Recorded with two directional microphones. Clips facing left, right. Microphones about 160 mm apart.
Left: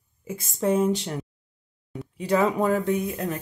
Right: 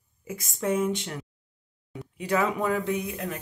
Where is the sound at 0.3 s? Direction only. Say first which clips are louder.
Left 4 dB; 30° left (ahead or behind).